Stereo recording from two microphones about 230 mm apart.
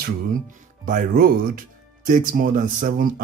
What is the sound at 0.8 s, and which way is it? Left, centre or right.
Speech, right.